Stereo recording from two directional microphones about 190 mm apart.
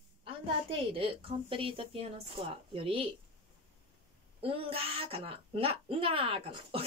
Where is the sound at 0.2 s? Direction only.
30° right (ahead or behind).